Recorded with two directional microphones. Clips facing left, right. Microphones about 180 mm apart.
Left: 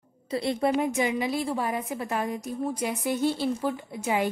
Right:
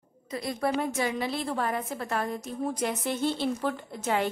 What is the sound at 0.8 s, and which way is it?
A woman's voice, 15° left (ahead or behind).